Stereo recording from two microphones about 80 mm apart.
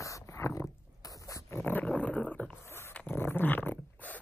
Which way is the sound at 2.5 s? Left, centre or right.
Left.